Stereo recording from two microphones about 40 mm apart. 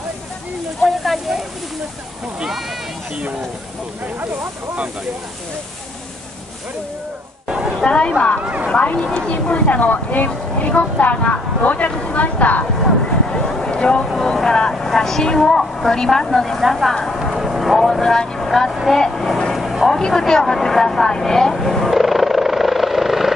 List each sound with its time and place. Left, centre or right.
0.8 s a sound: centre
7.8 s speech: left
8.4 s speech: right
8.7 s a woman's voice: left
11.9 s a sound: left
12.2 s a woman's voice: left
13.1 s a sound: left
14.2 s speech: centre
16.9 s vehicle: centre
18.1 s speech: centre
18.5 s speech: centre
19.5 s a sound: centre
19.9 s speech: centre
21.9 s helicopter: centre